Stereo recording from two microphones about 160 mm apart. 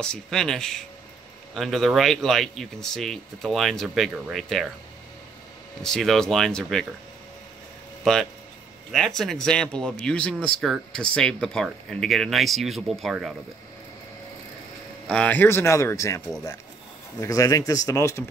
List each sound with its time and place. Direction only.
0.0 s speech: 5° left (ahead or behind)
5.8 s speech: 5° left (ahead or behind)
8.0 s speech: centre (ahead or behind)
15.0 s speech: 10° left (ahead or behind)
17.2 s speech: 20° left (ahead or behind)